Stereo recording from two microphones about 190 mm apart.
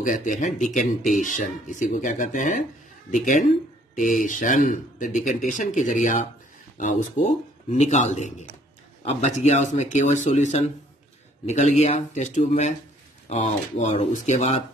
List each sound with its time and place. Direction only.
0.0 s a man's voice: 45° left (ahead or behind)